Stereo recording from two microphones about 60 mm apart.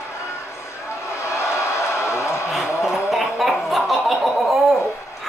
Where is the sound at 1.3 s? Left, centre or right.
Left.